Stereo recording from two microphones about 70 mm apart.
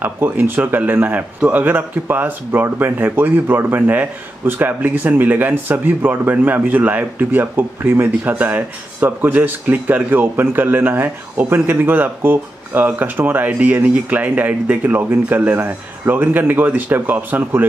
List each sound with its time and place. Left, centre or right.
0.0 s speech: right